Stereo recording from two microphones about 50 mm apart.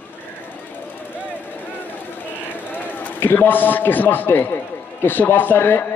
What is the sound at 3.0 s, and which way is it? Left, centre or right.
A man's voice, left.